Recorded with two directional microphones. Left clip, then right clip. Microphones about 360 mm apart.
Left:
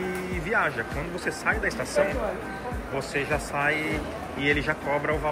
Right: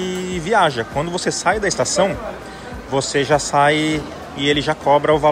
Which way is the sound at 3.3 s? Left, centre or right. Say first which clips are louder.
Right 12 dB; centre.